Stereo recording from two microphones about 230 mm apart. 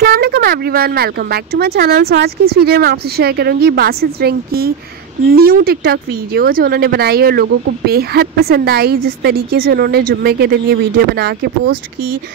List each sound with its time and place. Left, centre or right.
0.0 s speech: right